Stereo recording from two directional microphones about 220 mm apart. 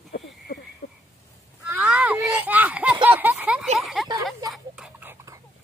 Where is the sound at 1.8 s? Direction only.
5° right (ahead or behind).